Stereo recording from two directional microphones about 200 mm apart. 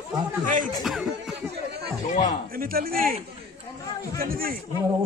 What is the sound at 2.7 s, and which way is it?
Speech, 45° right (ahead or behind).